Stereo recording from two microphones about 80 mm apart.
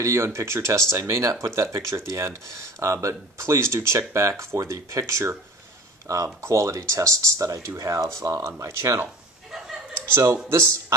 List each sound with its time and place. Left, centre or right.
0.0 s speech: right
10.1 s speech: right